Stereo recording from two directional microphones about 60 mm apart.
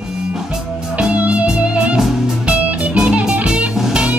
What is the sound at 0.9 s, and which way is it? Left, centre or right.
Music, right.